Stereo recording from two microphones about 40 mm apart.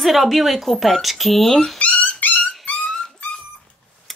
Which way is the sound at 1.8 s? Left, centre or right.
Left.